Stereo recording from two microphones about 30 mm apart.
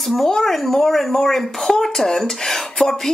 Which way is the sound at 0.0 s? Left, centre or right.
Centre.